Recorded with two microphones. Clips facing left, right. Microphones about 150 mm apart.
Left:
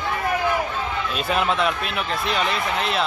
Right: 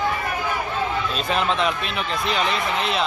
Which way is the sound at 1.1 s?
5° left (ahead or behind).